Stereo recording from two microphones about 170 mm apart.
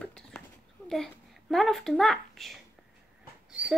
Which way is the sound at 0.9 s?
Centre (ahead or behind).